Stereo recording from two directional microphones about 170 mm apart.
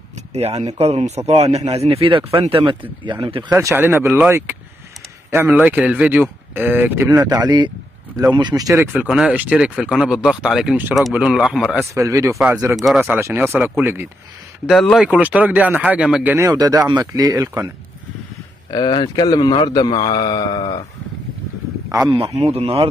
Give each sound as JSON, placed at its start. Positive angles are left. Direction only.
{"t": 0.3, "sound": "a man's voice", "side_deg": -40}
{"t": 3.4, "sound": "speech", "side_deg": -10}
{"t": 8.9, "sound": "speech", "side_deg": 0}
{"t": 11.9, "sound": "speech", "side_deg": -20}
{"t": 12.4, "sound": "speech", "side_deg": -5}
{"t": 13.2, "sound": "speech", "side_deg": -15}
{"t": 14.7, "sound": "speech", "side_deg": 0}
{"t": 16.3, "sound": "speech", "side_deg": -20}
{"t": 18.7, "sound": "a man's voice", "side_deg": 25}
{"t": 22.1, "sound": "a man's voice", "side_deg": -35}